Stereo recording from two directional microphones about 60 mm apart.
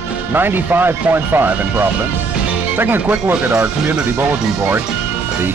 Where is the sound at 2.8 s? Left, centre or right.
Right.